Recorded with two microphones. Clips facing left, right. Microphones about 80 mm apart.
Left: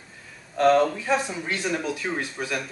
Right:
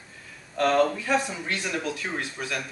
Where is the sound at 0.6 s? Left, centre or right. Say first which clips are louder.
Left 3 dB; centre.